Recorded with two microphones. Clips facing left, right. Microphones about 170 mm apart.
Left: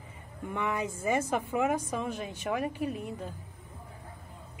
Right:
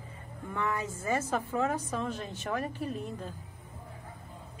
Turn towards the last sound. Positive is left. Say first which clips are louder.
# left 2 dB
turn(degrees=10)  # may be behind; listen again after turning